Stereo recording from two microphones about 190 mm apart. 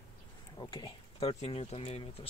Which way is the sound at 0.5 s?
25° left (ahead or behind).